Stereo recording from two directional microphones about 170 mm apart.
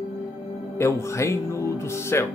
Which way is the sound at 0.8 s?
15° left (ahead or behind).